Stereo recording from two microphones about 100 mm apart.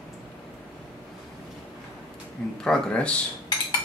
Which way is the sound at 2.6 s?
10° left (ahead or behind).